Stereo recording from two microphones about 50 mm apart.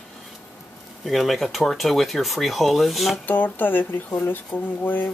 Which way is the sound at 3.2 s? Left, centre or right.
Left.